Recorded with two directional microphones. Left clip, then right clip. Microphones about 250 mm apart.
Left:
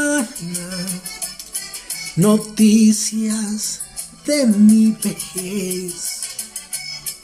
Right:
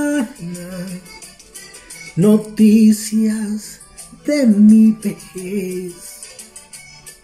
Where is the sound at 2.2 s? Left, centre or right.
Centre.